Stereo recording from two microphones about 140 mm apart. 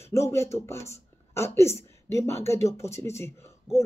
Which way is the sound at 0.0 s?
20° left (ahead or behind).